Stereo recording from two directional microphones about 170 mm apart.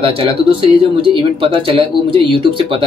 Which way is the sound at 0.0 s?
30° right (ahead or behind).